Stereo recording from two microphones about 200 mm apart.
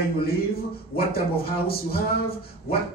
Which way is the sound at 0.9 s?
50° left (ahead or behind).